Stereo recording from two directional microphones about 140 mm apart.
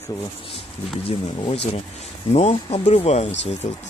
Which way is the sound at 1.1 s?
45° left (ahead or behind).